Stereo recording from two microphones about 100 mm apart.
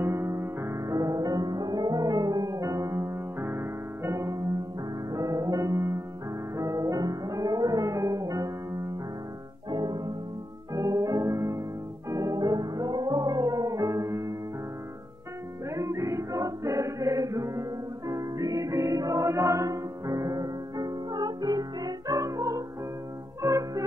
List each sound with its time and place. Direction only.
0.0 s music: 25° right (ahead or behind)
15.7 s music: 30° right (ahead or behind)